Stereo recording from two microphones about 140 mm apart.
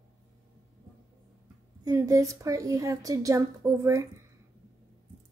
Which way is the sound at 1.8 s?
25° right (ahead or behind).